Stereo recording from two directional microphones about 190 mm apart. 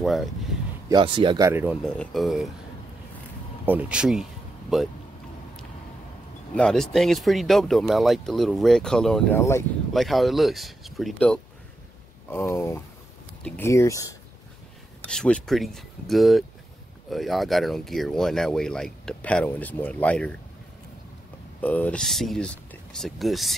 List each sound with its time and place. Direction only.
0.0 s speech: centre (ahead or behind)
0.8 s speech: 25° right (ahead or behind)
1.5 s speech: 10° right (ahead or behind)
1.8 s speech: 5° left (ahead or behind)
3.6 s speech: 5° right (ahead or behind)
6.5 s speech: 5° left (ahead or behind)
9.4 s speech: 15° left (ahead or behind)
9.9 s speech: centre (ahead or behind)
13.7 s speech: 15° left (ahead or behind)
15.0 s speech: 5° left (ahead or behind)
21.5 s speech: 10° left (ahead or behind)